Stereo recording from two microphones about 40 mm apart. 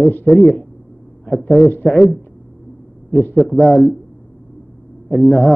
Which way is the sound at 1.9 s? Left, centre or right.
Centre.